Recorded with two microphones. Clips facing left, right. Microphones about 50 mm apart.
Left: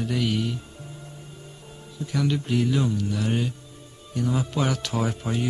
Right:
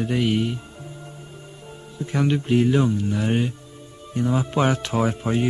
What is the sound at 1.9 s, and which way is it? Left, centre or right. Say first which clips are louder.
A man's voice: right 3 dB; right.